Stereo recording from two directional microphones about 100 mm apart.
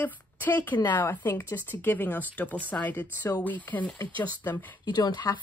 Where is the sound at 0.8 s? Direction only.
40° left (ahead or behind).